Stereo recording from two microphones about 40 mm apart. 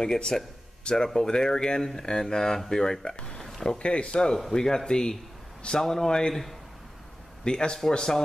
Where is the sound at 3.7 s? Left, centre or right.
Left.